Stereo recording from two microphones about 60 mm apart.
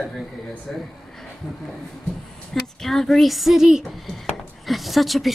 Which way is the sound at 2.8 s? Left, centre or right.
Centre.